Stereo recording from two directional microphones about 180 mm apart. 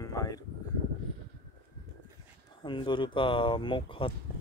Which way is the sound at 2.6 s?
25° left (ahead or behind).